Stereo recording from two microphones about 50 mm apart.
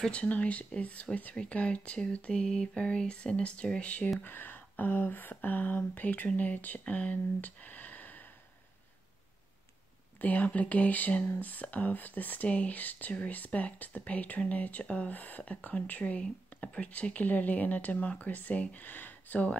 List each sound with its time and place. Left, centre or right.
0.1 s a sound: left
4.2 s speech: left
10.2 s speech: left